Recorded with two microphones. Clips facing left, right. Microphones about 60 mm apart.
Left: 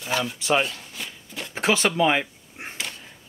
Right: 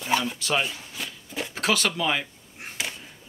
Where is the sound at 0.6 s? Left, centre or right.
Centre.